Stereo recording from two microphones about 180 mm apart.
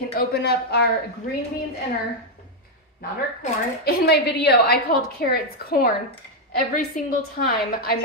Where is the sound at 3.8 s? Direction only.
65° left (ahead or behind).